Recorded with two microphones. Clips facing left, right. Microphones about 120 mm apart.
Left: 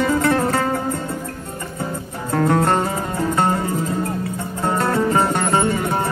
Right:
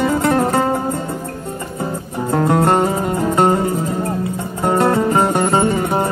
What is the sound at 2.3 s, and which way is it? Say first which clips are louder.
Music: right 2 dB; 20° right (ahead or behind).